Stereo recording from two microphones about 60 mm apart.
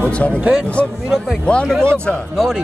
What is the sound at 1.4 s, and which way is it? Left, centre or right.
Speech, centre.